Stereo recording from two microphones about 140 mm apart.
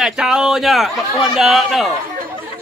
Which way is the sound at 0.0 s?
5° right (ahead or behind).